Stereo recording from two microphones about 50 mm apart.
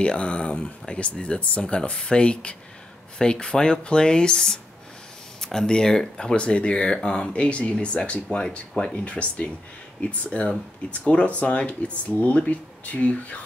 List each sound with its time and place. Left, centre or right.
0.0 s speech: left
8.9 s speech: left